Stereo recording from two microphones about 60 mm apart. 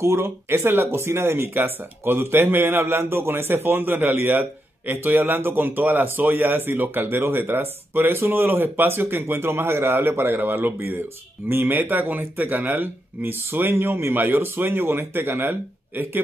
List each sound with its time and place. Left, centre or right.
0.0 s speech: right